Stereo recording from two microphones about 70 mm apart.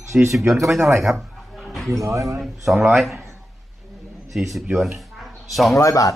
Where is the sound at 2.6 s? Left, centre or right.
Centre.